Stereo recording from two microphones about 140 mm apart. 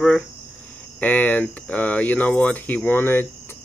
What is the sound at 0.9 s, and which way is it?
Speech, 10° left (ahead or behind).